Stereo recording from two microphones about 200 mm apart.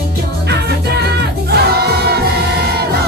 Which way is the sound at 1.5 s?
55° right (ahead or behind).